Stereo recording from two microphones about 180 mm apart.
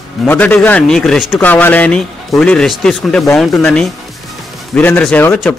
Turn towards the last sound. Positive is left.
turn(degrees=10)  # may be behind; listen again after turning